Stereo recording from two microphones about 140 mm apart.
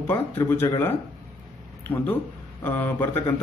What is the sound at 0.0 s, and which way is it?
Speech, 15° left (ahead or behind).